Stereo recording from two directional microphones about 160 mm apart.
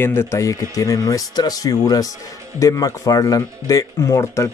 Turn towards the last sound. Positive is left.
turn(degrees=20)  # may be behind; listen again after turning